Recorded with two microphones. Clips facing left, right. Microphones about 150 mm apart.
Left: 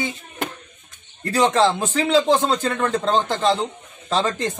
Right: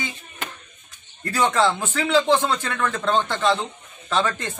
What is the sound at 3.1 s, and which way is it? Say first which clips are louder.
A man's voice: right 1 dB; 35° left (ahead or behind).